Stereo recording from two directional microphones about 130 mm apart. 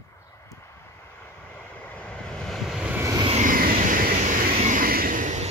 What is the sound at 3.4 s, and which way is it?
Vehicle, 90° right.